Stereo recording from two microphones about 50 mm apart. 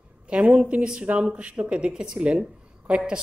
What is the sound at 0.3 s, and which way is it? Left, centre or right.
Speech, right.